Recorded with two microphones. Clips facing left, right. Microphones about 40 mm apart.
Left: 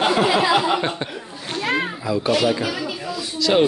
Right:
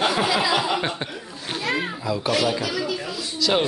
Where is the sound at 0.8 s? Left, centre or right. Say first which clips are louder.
Left 2 dB; centre.